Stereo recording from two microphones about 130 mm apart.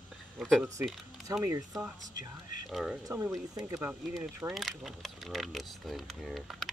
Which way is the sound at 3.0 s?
20° right (ahead or behind).